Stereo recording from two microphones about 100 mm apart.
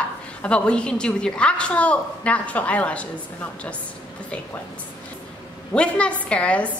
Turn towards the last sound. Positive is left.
turn(degrees=10)  # may be behind; listen again after turning